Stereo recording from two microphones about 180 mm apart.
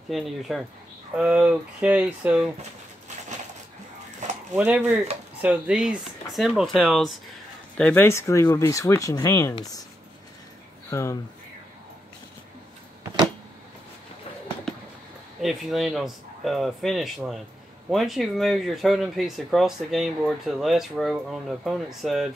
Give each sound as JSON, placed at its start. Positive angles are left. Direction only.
{"t": 0.1, "sound": "speech", "side_deg": 0}
{"t": 4.2, "sound": "a sound", "side_deg": -40}
{"t": 4.6, "sound": "speech", "side_deg": -10}
{"t": 10.9, "sound": "speech", "side_deg": 15}
{"t": 15.4, "sound": "speech", "side_deg": 0}